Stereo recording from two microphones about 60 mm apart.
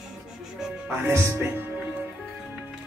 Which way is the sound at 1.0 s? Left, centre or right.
Right.